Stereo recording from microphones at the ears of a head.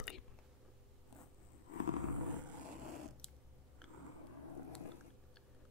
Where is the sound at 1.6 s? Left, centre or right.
Left.